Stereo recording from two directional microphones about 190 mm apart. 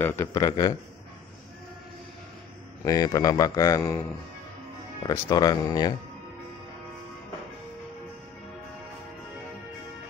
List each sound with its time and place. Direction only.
0.0 s speech: 15° left (ahead or behind)
2.8 s a man's voice: 20° left (ahead or behind)